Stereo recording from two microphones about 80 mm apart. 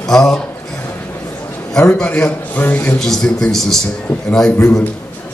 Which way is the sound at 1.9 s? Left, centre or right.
Centre.